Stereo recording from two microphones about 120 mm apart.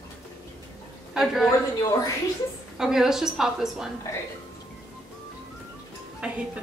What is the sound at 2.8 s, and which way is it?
A woman's voice, 5° right (ahead or behind).